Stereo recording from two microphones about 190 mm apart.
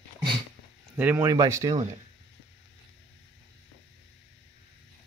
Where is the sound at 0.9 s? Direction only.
10° right (ahead or behind).